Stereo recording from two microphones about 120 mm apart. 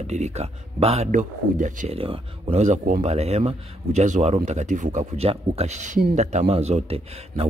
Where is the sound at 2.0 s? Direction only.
50° right (ahead or behind).